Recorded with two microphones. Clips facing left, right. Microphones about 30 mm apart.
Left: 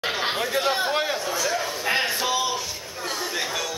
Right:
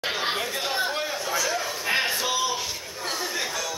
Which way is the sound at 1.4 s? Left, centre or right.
Centre.